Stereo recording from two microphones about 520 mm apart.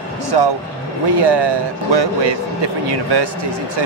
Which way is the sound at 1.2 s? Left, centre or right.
Right.